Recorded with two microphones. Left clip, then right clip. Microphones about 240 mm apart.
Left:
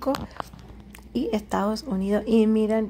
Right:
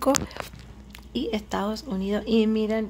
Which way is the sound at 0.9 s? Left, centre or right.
Centre.